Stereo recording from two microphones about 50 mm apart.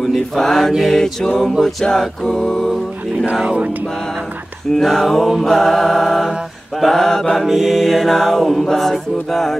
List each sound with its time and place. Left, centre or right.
0.0 s mantra: centre
0.7 s a capella: centre
3.4 s a sound: right
4.7 s mantra: centre
7.4 s mantra: centre